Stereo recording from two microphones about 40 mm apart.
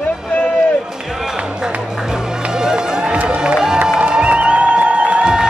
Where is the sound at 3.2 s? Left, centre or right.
Right.